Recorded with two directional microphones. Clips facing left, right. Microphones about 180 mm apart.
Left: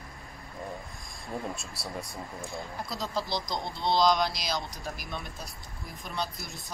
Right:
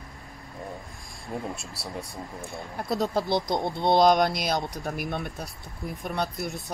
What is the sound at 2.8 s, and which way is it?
Speech, 60° right (ahead or behind).